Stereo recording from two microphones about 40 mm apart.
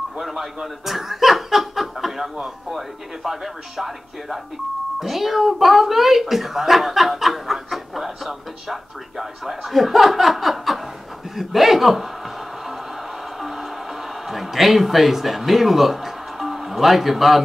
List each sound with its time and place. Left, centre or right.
0.2 s speech: centre
13.4 s music: centre
14.2 s a man's voice: centre